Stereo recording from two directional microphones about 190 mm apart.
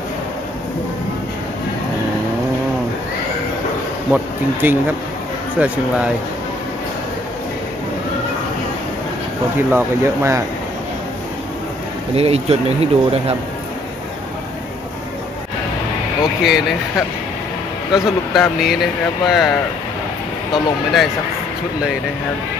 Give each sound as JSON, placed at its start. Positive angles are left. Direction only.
{"t": 4.1, "sound": "speech", "side_deg": -10}
{"t": 9.6, "sound": "speech", "side_deg": -10}
{"t": 12.2, "sound": "speech", "side_deg": -35}
{"t": 17.9, "sound": "speech", "side_deg": 0}
{"t": 20.5, "sound": "speech", "side_deg": 0}